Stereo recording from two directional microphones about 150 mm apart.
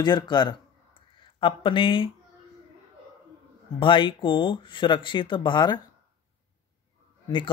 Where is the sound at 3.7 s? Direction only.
35° left (ahead or behind).